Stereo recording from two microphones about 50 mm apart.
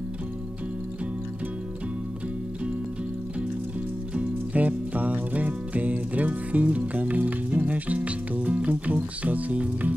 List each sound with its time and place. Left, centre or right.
4.1 s music: right